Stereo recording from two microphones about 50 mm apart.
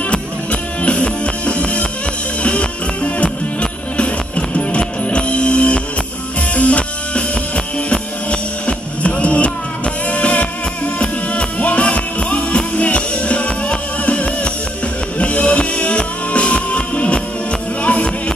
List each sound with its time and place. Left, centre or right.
0.1 s music: left